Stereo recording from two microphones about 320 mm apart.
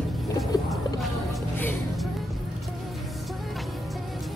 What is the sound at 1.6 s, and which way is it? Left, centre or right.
Music, centre.